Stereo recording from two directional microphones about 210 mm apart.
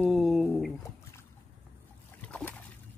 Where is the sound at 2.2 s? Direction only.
5° left (ahead or behind).